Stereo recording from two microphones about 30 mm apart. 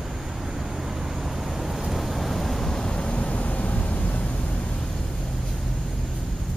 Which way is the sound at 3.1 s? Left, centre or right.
Left.